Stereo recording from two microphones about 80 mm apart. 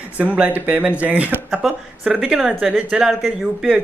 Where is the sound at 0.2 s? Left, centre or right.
Centre.